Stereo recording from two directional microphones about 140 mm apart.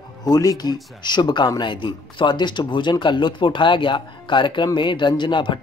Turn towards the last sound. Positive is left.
turn(degrees=35)  # may be behind; listen again after turning